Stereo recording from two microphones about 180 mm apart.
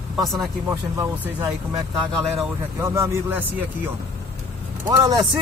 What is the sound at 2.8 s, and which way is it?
Speech, 15° right (ahead or behind).